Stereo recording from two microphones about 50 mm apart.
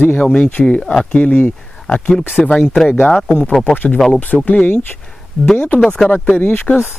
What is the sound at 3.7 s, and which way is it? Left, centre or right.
Speech, left.